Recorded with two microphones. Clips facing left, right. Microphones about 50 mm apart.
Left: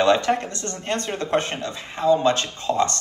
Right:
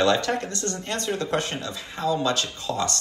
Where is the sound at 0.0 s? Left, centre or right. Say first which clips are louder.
Left 3 dB; left.